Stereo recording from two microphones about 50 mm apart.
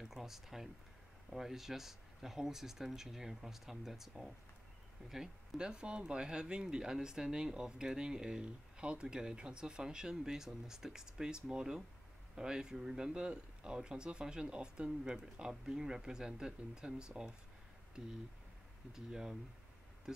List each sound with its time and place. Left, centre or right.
0.0 s speech: centre
18.9 s speech: centre